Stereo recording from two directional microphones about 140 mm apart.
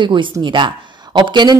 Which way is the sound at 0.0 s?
35° right (ahead or behind).